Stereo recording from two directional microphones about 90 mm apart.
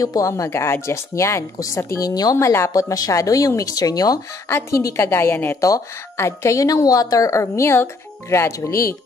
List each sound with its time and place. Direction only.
0.0 s a woman's voice: 40° left (ahead or behind)
2.3 s a woman's voice: 30° left (ahead or behind)
4.5 s a woman's voice: 30° left (ahead or behind)
5.6 s a woman's voice: 35° left (ahead or behind)